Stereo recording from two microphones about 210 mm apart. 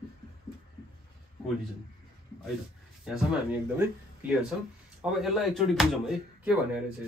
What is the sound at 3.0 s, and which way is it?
Speech, 5° right (ahead or behind).